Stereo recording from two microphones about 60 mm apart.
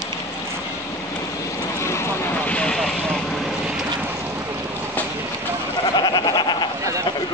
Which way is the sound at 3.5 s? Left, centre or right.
Centre.